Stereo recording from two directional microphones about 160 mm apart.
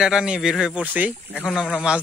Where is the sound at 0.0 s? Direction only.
5° right (ahead or behind).